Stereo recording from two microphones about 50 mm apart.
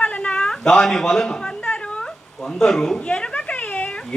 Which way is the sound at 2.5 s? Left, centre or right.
Centre.